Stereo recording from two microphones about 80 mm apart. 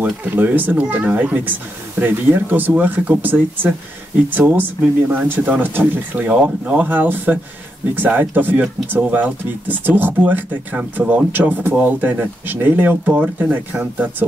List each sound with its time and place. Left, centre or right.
0.0 s speech: right